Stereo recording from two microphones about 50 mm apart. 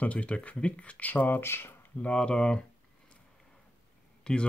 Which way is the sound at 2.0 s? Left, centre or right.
Left.